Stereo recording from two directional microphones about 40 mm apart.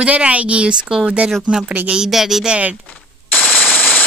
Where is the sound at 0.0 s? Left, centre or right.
Right.